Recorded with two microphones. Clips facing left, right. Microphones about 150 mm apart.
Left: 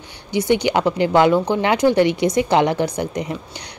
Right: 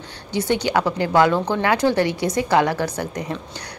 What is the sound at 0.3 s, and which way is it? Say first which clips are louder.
A woman's voice: left 3 dB; 15° left (ahead or behind).